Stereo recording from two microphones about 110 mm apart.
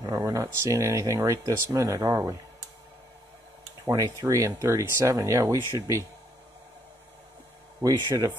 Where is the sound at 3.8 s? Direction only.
35° right (ahead or behind).